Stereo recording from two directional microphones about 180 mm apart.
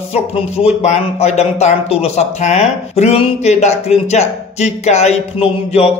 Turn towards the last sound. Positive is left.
turn(degrees=35)  # may be behind; listen again after turning